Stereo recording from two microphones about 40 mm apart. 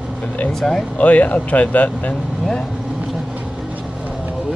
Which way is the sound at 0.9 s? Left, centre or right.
Left.